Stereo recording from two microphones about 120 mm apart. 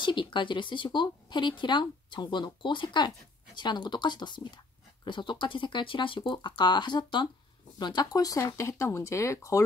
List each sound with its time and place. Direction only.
0.0 s speech: 40° left (ahead or behind)